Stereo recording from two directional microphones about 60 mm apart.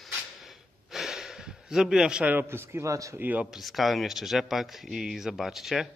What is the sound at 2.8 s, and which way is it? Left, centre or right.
Speech, right.